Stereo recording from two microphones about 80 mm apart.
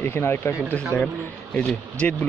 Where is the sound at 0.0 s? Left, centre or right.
Left.